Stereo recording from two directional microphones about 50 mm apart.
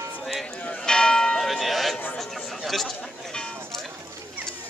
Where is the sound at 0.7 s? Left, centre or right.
Centre.